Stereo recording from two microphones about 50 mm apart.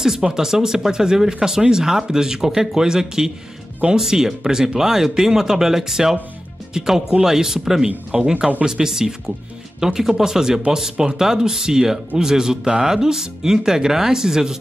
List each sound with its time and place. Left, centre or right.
0.0 s speech: centre